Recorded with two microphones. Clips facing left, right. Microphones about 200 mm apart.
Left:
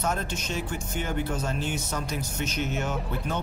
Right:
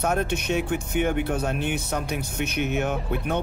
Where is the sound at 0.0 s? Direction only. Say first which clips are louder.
Right 5 dB; 60° right (ahead or behind).